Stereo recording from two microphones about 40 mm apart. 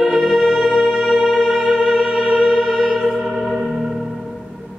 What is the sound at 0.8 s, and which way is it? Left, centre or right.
Music, centre.